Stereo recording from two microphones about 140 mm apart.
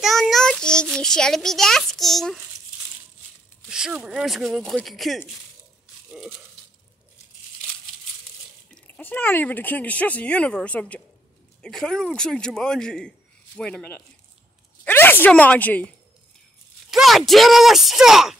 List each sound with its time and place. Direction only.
0.0 s child singing: centre (ahead or behind)
0.9 s speech: 5° left (ahead or behind)
3.6 s speech: 5° right (ahead or behind)
8.6 s speech: 10° left (ahead or behind)
16.9 s speech: centre (ahead or behind)